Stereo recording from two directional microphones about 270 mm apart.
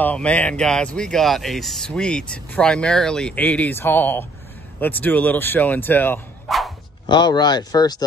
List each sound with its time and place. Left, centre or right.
0.0 s speech: centre
7.1 s speech: centre